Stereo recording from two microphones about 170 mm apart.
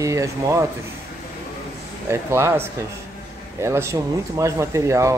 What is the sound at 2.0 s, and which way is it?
Speech, 15° right (ahead or behind).